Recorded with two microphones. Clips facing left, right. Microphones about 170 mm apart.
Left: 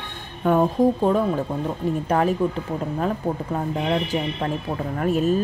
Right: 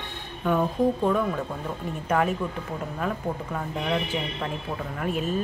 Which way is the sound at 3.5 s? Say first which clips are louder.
Left 4 dB; 35° left (ahead or behind).